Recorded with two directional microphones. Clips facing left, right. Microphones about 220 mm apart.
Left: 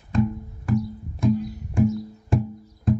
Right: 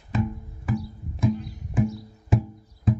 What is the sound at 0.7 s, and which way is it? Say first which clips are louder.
Music: left 5 dB; 5° right (ahead or behind).